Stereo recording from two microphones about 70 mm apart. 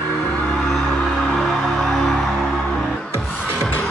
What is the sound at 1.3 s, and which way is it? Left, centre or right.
Music, centre.